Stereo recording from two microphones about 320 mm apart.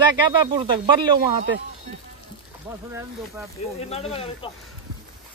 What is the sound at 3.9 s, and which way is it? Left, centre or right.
Speech, centre.